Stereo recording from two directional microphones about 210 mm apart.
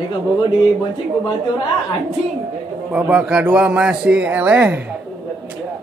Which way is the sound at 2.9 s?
5° right (ahead or behind).